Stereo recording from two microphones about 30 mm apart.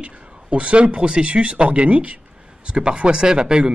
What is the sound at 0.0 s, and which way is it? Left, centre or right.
A man's voice, right.